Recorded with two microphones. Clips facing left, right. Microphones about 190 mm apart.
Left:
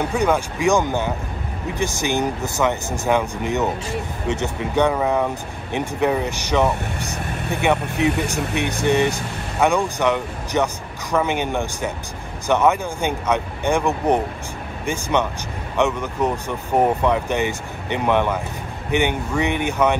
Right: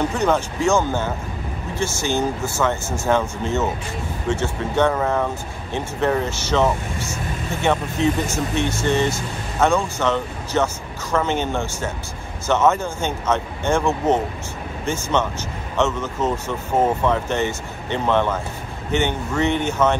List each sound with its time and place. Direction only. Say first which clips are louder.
0.1 s speech: even; 10° left (ahead or behind)
7.2 s speech: left 1 dB; 65° left (ahead or behind)
8.0 s speech: even; 15° left (ahead or behind)